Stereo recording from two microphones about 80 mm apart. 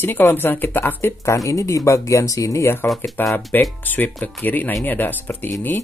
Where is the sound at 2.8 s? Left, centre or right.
Centre.